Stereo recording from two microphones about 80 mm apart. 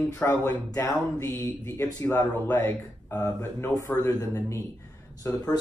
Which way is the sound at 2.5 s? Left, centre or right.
Left.